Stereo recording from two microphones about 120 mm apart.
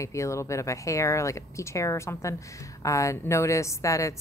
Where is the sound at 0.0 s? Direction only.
25° left (ahead or behind).